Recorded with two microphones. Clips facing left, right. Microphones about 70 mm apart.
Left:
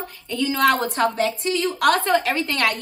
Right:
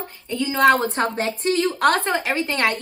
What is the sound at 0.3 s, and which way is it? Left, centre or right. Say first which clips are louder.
A woman's voice: right 2 dB; right.